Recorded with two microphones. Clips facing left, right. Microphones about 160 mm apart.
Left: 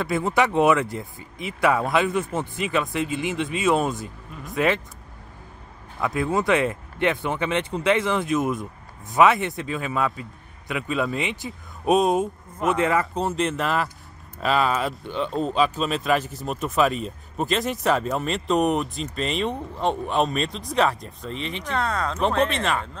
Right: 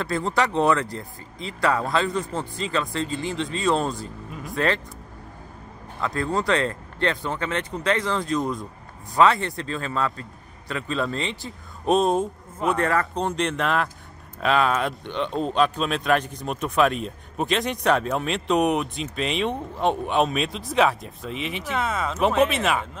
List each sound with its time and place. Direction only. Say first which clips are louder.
0.1 s speech: left 2 dB; 15° left (ahead or behind)
5.9 s speech: left 2 dB; 15° left (ahead or behind)
11.9 s speech: left 1 dB; centre (ahead or behind)